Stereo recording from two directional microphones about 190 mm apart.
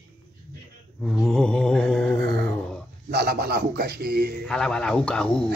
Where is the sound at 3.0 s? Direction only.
55° right (ahead or behind).